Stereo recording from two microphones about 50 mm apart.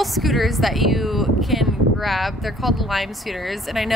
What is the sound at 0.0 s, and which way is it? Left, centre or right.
Speech, centre.